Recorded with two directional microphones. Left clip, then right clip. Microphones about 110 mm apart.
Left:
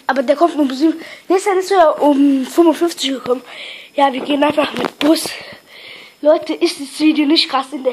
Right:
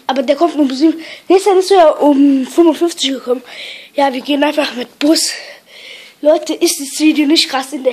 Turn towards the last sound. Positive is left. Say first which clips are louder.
# right 1 dB
turn(degrees=-25)  # may be behind; listen again after turning